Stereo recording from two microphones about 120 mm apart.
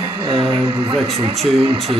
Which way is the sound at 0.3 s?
45° right (ahead or behind).